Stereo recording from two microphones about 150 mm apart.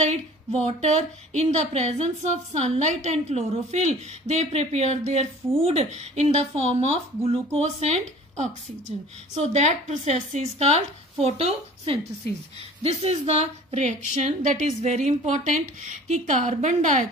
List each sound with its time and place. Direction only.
0.0 s a woman's voice: 50° right (ahead or behind)